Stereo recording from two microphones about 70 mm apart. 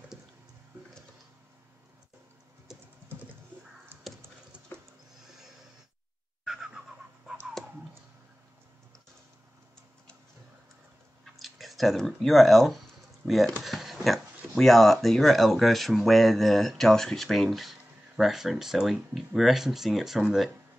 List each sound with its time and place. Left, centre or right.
2.7 s typing: centre
4.1 s a sound: centre
6.4 s a sound: centre
11.3 s speech: centre
13.2 s speech: right
13.6 s speech: centre